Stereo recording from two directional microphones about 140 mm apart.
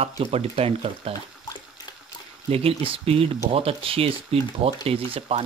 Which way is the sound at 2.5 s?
45° right (ahead or behind).